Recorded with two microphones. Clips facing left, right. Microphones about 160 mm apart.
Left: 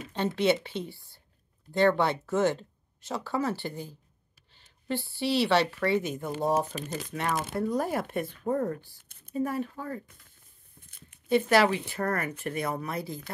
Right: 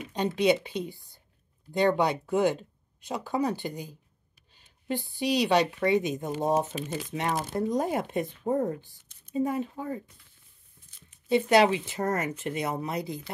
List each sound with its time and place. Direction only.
0.1 s speech: 15° right (ahead or behind)
10.9 s a sound: 55° left (ahead or behind)
11.2 s speech: 20° right (ahead or behind)